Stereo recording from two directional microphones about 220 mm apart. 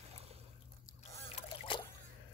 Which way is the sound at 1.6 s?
25° left (ahead or behind).